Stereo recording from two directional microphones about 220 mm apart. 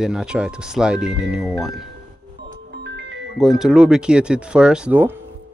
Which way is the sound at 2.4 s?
50° right (ahead or behind).